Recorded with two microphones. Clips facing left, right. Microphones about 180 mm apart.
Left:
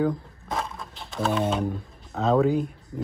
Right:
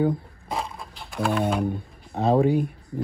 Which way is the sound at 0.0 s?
25° right (ahead or behind).